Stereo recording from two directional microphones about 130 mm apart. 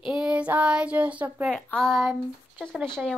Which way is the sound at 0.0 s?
5° right (ahead or behind).